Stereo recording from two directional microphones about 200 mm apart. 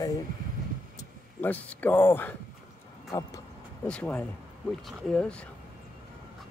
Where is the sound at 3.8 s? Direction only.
5° left (ahead or behind).